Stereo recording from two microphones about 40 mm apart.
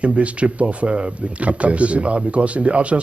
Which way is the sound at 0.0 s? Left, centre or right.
Right.